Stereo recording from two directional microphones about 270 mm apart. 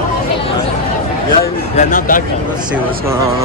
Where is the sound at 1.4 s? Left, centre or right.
Left.